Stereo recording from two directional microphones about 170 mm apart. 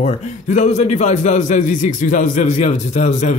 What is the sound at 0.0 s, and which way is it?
A man's voice, 45° left (ahead or behind).